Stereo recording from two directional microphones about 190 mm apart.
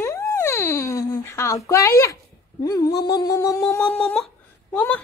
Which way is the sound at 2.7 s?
20° left (ahead or behind).